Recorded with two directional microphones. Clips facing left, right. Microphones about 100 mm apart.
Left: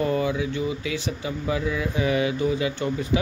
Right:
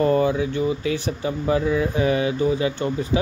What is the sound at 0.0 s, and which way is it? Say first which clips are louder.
Speech: right 5 dB; 40° right (ahead or behind).